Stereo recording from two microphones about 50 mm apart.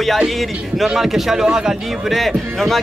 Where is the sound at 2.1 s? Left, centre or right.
Centre.